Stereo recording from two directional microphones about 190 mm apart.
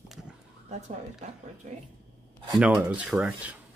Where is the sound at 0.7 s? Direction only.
35° right (ahead or behind).